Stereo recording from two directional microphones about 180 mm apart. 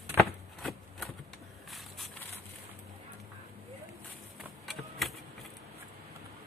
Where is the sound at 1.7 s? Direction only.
Centre (ahead or behind).